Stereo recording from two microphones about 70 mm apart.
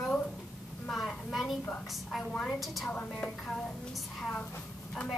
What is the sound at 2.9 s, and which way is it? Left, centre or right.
Speech, centre.